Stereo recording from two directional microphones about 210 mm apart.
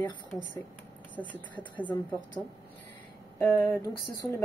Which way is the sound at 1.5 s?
5° left (ahead or behind).